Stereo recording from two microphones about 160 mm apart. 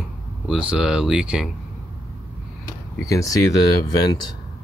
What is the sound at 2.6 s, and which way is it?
Speech, 20° left (ahead or behind).